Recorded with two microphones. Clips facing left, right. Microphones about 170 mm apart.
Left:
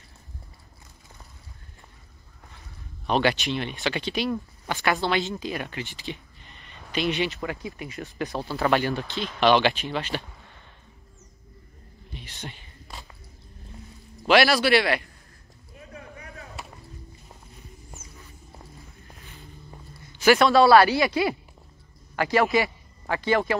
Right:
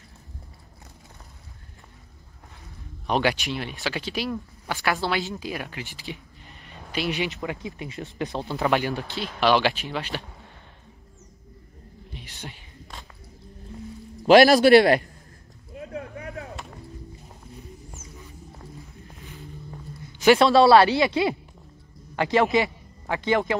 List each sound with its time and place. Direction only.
3.1 s speech: 10° right (ahead or behind)
7.4 s speech: 20° right (ahead or behind)
12.1 s a sound: 10° right (ahead or behind)
12.9 s music: 5° left (ahead or behind)
14.2 s a man's voice: 45° right (ahead or behind)
15.7 s a sound: 70° right (ahead or behind)
20.2 s a man's voice: 25° right (ahead or behind)